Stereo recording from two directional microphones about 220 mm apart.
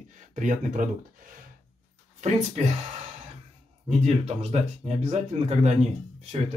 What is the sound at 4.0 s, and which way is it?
Speech, 30° right (ahead or behind).